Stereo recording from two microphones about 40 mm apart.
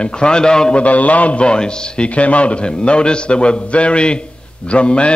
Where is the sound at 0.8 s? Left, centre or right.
Left.